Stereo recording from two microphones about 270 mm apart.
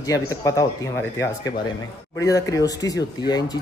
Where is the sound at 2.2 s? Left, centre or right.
Centre.